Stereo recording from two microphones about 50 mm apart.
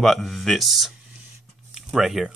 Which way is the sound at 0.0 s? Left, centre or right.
Centre.